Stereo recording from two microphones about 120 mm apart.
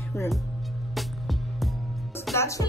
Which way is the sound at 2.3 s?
25° left (ahead or behind).